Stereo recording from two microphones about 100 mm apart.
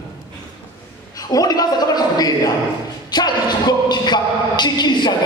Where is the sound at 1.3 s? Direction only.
40° left (ahead or behind).